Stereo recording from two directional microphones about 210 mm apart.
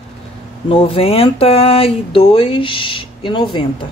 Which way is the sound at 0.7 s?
25° left (ahead or behind).